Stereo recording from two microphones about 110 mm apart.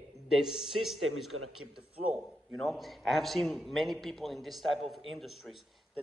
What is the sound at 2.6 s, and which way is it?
A man's voice, centre (ahead or behind).